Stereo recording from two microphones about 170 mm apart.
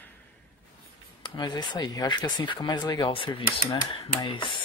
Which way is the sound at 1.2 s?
25° left (ahead or behind).